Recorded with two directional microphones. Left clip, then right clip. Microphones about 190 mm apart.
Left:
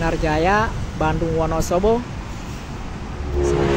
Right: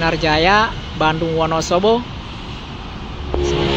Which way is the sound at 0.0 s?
Centre (ahead or behind).